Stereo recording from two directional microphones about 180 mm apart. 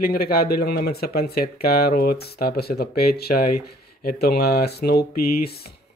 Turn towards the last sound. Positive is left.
turn(degrees=60)  # may be behind; listen again after turning